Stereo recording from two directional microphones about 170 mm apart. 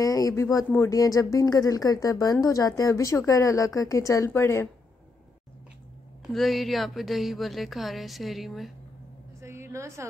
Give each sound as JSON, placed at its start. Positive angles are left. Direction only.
{"t": 0.0, "sound": "speech", "side_deg": 20}
{"t": 6.2, "sound": "speech", "side_deg": 0}
{"t": 9.4, "sound": "a sound", "side_deg": -15}